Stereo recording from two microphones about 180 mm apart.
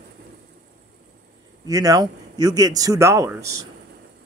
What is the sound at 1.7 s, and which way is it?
Speech, 20° right (ahead or behind).